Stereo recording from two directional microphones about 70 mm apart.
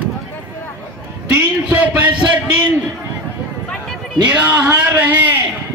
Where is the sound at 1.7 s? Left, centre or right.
Right.